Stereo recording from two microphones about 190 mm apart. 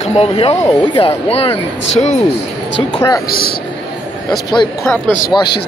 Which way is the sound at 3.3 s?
50° left (ahead or behind).